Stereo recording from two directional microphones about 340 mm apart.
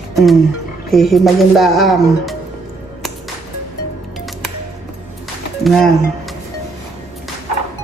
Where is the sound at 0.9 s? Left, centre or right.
Centre.